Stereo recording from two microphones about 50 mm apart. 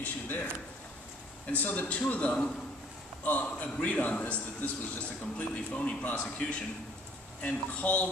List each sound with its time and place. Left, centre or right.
0.0 s a man's voice: left
1.5 s a man's voice: left